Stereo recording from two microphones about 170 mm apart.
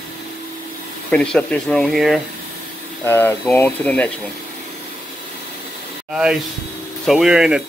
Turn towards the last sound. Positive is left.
turn(degrees=-5)  # may be behind; listen again after turning